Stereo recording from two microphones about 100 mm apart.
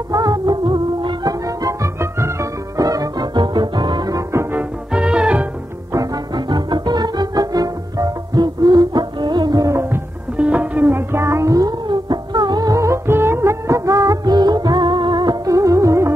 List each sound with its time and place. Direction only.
0.1 s music: 40° right (ahead or behind)
2.8 s music: 40° right (ahead or behind)
4.1 s music: 30° right (ahead or behind)
4.6 s music: 10° right (ahead or behind)
5.9 s music: 45° right (ahead or behind)
10.3 s music: 15° right (ahead or behind); by 15.5 s 45° right (ahead or behind)
15.5 s music: 35° right (ahead or behind)